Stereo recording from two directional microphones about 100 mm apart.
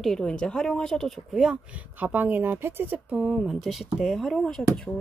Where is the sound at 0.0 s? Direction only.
5° left (ahead or behind); by 3.2 s 20° right (ahead or behind).